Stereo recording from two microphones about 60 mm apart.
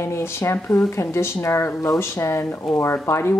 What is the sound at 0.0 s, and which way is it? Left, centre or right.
Speech, left.